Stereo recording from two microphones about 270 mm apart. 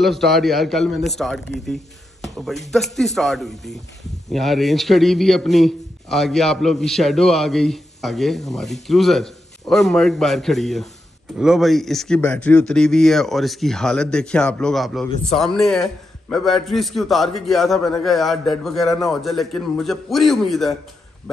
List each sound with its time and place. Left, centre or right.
0.0 s a man's voice: centre